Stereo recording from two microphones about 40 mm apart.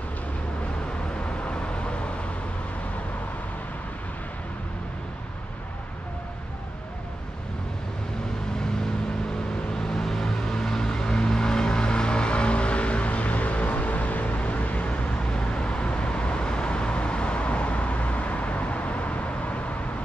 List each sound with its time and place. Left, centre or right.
1.2 s vehicle: left
9.8 s vehicle: centre; by 19.6 s left